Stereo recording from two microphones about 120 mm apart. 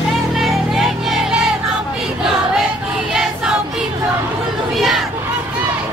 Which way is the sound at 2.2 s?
5° right (ahead or behind).